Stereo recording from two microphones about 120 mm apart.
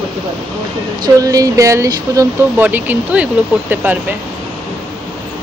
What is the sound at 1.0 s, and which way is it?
Speech, 30° right (ahead or behind).